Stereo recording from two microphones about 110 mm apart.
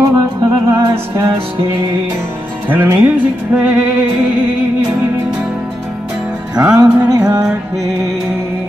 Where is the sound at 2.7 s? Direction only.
15° right (ahead or behind).